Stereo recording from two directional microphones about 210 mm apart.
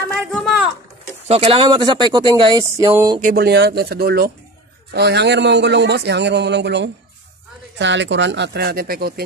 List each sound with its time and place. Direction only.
0.2 s a sound: centre (ahead or behind)
1.2 s speech: 30° right (ahead or behind)
3.2 s a man's voice: 40° right (ahead or behind)